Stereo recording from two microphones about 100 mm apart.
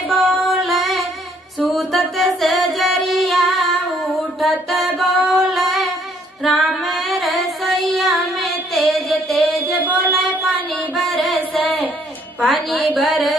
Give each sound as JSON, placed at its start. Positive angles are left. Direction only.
{"t": 0.1, "sound": "music", "side_deg": 0}
{"t": 4.4, "sound": "child singing", "side_deg": 0}
{"t": 6.4, "sound": "female singing", "side_deg": 0}
{"t": 9.7, "sound": "a sound", "side_deg": -15}
{"t": 11.0, "sound": "music", "side_deg": 0}
{"t": 12.4, "sound": "a sound", "side_deg": 0}